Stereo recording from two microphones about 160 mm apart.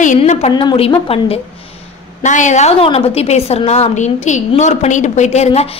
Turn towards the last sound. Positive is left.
turn(degrees=40)  # may be behind; listen again after turning